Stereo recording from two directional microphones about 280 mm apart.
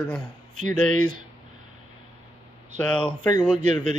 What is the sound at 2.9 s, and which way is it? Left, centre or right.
Speech, centre.